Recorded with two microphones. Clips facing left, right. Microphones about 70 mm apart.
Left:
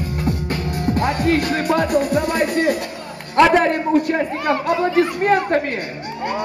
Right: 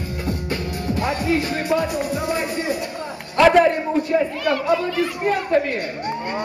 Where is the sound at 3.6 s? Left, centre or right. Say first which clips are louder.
Even; left.